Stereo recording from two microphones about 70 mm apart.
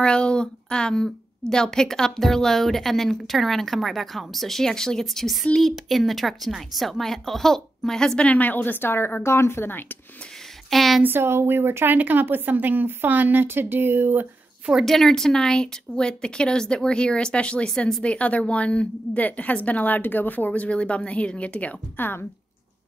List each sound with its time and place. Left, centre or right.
0.0 s a woman's voice: centre
8.2 s a woman's voice: left
10.7 s speech: centre
11.0 s a woman's voice: right
14.7 s a woman's voice: centre